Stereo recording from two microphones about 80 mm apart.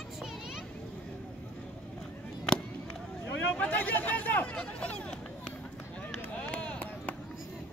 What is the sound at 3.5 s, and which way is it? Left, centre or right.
Chatter, left.